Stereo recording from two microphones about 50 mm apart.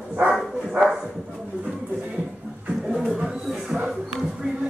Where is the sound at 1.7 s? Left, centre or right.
Right.